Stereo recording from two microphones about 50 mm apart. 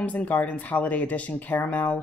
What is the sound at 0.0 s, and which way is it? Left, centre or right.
Speech, left.